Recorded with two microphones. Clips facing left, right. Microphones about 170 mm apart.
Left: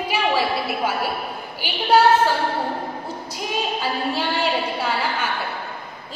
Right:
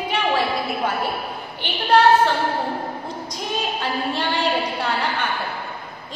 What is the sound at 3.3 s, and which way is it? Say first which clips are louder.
A woman's voice: left 1 dB; 5° left (ahead or behind).